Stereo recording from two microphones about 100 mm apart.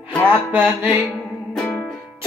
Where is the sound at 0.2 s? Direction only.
20° right (ahead or behind).